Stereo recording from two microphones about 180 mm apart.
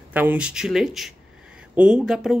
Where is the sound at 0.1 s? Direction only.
10° right (ahead or behind).